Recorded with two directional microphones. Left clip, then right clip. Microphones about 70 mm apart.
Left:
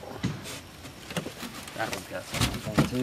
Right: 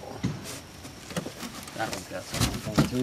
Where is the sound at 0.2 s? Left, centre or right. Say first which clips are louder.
Even; left.